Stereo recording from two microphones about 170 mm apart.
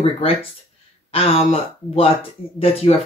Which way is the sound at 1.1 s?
35° left (ahead or behind).